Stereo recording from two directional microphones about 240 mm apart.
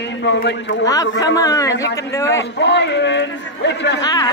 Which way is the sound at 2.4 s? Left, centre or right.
Left.